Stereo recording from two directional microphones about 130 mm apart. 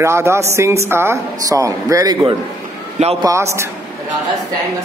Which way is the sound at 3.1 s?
25° right (ahead or behind).